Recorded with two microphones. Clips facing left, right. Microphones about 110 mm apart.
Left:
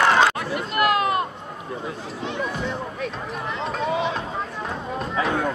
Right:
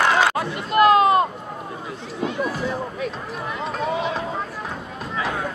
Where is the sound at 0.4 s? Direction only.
25° right (ahead or behind).